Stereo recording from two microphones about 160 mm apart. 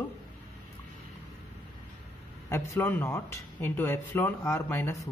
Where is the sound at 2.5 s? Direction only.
20° left (ahead or behind).